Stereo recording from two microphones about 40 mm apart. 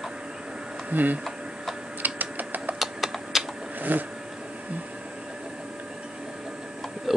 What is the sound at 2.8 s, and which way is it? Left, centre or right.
Typing, centre.